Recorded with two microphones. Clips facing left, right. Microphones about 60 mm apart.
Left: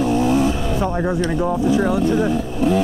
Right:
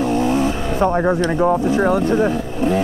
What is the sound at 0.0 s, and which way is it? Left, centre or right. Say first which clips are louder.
Vehicle: even; right.